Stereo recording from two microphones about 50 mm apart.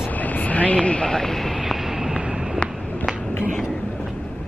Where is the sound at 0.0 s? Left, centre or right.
Left.